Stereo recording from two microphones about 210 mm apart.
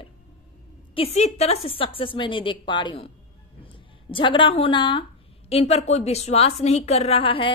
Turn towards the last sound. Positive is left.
turn(degrees=25)  # may be behind; listen again after turning